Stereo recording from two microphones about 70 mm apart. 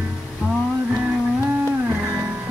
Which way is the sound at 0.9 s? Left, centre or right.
Centre.